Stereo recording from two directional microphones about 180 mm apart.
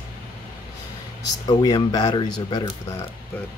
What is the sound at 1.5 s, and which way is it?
Speech, 20° left (ahead or behind).